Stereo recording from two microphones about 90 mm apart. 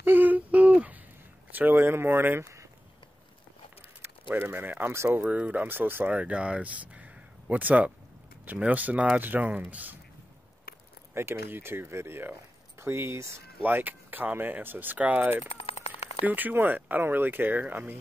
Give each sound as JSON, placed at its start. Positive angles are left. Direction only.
{"t": 0.0, "sound": "humming", "side_deg": -20}
{"t": 1.5, "sound": "speech", "side_deg": -20}
{"t": 4.3, "sound": "speech", "side_deg": -25}
{"t": 11.1, "sound": "speech", "side_deg": -30}